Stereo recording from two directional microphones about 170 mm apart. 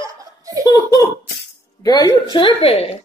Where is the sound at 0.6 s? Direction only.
25° left (ahead or behind).